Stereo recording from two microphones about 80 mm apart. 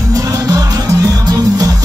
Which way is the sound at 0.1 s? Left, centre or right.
Right.